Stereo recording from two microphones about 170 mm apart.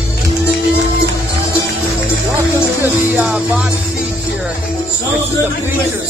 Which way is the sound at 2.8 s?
10° right (ahead or behind).